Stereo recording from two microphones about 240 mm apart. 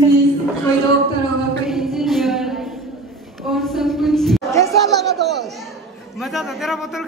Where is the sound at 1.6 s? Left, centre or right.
Centre.